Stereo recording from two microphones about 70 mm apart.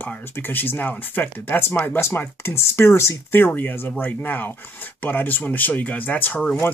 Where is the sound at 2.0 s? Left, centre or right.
Left.